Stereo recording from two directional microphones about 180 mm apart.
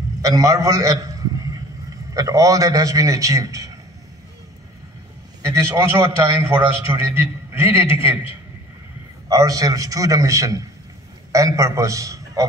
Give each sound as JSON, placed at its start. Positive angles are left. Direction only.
{"t": 0.2, "sound": "a man's voice", "side_deg": -20}
{"t": 5.4, "sound": "a man's voice", "side_deg": -15}
{"t": 9.3, "sound": "a man's voice", "side_deg": -20}